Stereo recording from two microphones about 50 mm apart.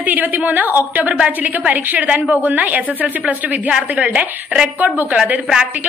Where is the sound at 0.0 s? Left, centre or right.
Right.